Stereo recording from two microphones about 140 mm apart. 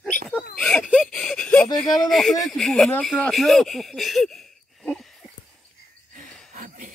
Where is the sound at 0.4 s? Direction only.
5° left (ahead or behind).